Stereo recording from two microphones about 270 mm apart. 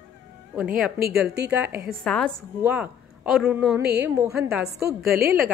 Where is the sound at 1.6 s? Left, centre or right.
Right.